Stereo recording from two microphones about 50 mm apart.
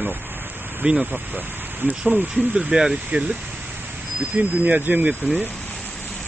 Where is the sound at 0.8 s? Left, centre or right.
Right.